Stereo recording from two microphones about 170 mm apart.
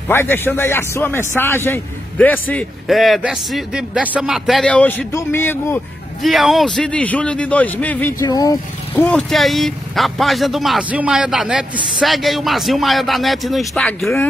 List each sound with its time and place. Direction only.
0.1 s a man's voice: 15° left (ahead or behind)
6.2 s a man's voice: centre (ahead or behind)
8.2 s speech: 20° left (ahead or behind)
8.9 s speech: 5° left (ahead or behind)